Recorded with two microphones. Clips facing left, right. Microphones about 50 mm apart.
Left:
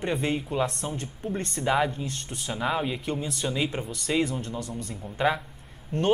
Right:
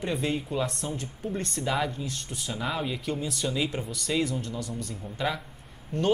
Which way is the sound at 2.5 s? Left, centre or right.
Centre.